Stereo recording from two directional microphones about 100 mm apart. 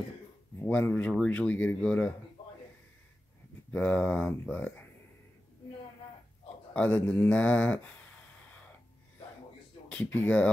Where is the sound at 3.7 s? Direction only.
15° left (ahead or behind).